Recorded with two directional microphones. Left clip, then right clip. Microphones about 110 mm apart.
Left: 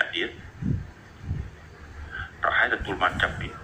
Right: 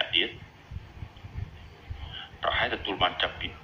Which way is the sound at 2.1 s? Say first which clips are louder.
Left 5 dB; 25° left (ahead or behind).